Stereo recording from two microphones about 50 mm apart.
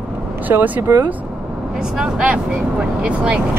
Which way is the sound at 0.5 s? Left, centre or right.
Right.